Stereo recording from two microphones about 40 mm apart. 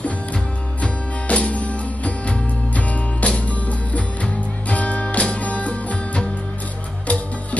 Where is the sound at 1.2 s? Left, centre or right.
Left.